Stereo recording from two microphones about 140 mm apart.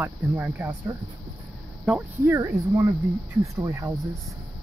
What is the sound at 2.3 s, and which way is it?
Speech, 20° right (ahead or behind).